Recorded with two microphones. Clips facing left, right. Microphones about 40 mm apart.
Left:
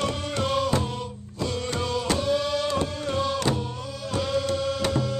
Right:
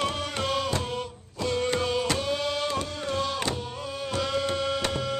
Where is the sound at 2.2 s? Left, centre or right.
Centre.